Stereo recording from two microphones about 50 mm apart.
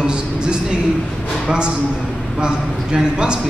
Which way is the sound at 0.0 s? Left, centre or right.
Centre.